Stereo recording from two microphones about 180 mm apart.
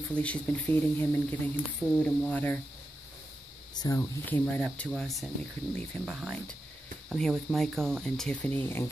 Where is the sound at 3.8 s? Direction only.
15° left (ahead or behind).